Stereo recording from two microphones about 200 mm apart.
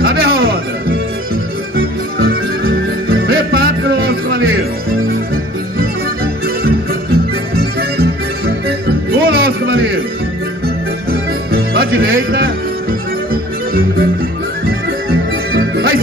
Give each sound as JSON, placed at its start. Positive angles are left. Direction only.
{"t": 0.0, "sound": "music", "side_deg": -50}
{"t": 3.2, "sound": "music", "side_deg": -50}
{"t": 7.5, "sound": "music", "side_deg": -50}
{"t": 11.1, "sound": "music", "side_deg": -50}